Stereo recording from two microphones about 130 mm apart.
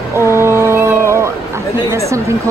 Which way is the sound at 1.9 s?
25° right (ahead or behind).